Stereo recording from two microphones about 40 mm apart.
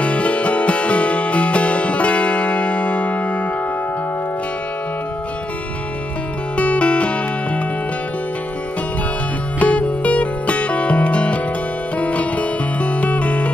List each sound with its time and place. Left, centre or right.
0.0 s music: left
6.5 s music: left
9.6 s music: left